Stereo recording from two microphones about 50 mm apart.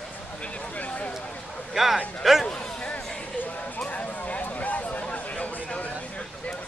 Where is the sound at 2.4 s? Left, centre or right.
Left.